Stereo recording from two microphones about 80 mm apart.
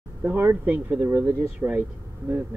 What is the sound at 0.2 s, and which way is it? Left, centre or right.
Speech, right.